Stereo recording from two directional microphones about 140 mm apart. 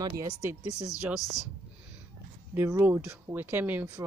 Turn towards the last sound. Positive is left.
turn(degrees=-10)  # may be behind; listen again after turning